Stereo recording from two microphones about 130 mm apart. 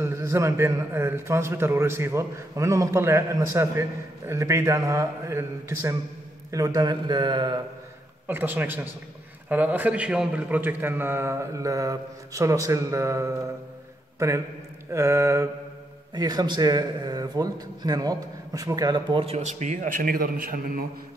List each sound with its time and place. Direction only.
0.0 s a man's voice: 20° right (ahead or behind); by 7.6 s 35° right (ahead or behind)
8.3 s a man's voice: 15° right (ahead or behind)
16.2 s speech: 30° right (ahead or behind)
19.2 s a man's voice: 60° right (ahead or behind); by 20.8 s 90° right